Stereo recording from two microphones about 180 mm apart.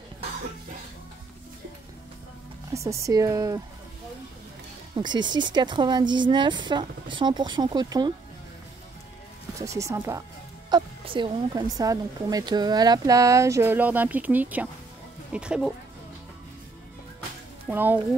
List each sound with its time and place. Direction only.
2.7 s speech: 15° right (ahead or behind)
4.9 s speech: 25° right (ahead or behind)
9.6 s speech: 15° right (ahead or behind)
17.6 s speech: 10° right (ahead or behind)